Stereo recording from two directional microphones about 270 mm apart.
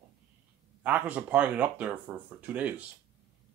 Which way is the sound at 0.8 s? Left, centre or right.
Centre.